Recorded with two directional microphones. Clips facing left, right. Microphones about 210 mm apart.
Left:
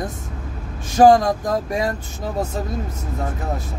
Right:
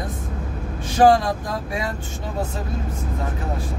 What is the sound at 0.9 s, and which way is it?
Speech, 45° left (ahead or behind).